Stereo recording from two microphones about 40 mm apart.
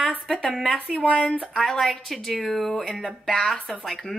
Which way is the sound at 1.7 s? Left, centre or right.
Centre.